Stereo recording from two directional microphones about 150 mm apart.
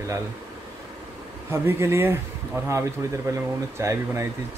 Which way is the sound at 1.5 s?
15° right (ahead or behind).